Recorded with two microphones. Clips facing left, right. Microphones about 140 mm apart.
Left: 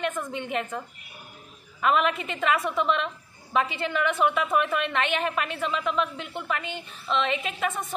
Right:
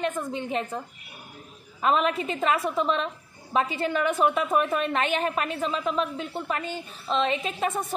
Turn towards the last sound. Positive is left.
turn(degrees=-35)  # may be behind; listen again after turning